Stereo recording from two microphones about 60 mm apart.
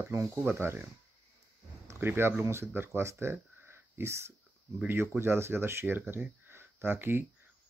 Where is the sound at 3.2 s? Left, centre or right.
Right.